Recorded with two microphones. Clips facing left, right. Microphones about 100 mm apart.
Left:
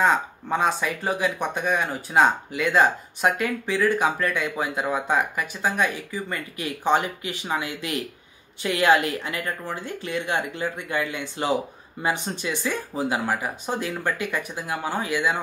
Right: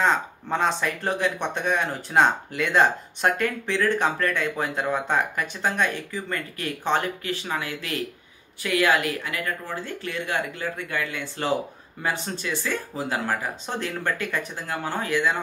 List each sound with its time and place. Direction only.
0.0 s speech: 5° left (ahead or behind)